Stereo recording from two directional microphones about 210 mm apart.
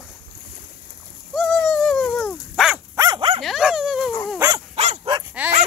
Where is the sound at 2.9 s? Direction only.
20° right (ahead or behind).